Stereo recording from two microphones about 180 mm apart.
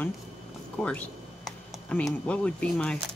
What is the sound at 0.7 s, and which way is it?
Speech, 5° left (ahead or behind).